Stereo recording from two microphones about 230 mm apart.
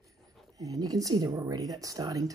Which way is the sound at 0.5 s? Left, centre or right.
Centre.